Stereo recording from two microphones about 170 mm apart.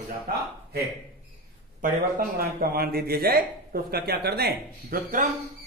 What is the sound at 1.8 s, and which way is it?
A man's voice, 60° right (ahead or behind).